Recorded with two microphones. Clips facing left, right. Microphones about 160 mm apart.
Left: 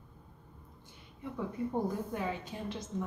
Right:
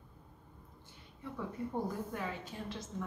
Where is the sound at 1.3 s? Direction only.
20° left (ahead or behind).